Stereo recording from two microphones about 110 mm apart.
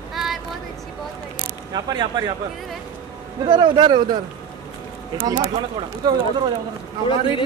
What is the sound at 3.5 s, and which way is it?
Speech, 45° right (ahead or behind).